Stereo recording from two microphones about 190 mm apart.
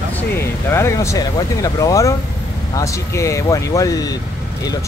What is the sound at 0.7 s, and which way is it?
Speech, 15° left (ahead or behind).